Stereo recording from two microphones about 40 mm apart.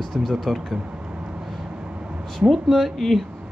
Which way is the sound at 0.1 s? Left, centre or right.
Centre.